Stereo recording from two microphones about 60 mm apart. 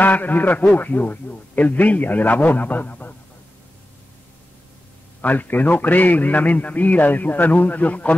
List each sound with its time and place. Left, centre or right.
0.0 s a man's voice: left
5.2 s a man's voice: left